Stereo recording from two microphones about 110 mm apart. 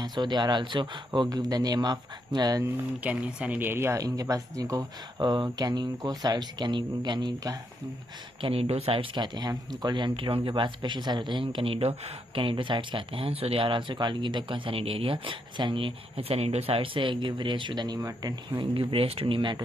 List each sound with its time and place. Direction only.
0.0 s speech: 40° right (ahead or behind)
3.0 s speech: 15° right (ahead or behind); by 4.8 s 30° right (ahead or behind)
5.2 s speech: 45° right (ahead or behind)
8.4 s speech: 60° right (ahead or behind)
9.1 s speech: 40° right (ahead or behind)
18.5 s speech: 50° right (ahead or behind)